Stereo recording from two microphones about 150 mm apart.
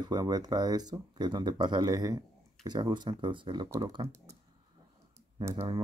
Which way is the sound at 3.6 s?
20° right (ahead or behind).